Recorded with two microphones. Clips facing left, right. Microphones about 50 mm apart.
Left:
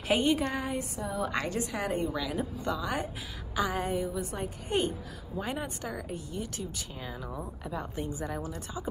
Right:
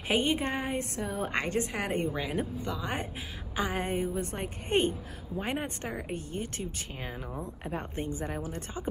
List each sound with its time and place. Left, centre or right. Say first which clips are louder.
0.1 s speech: left 1 dB; right
0.9 s speech: even; right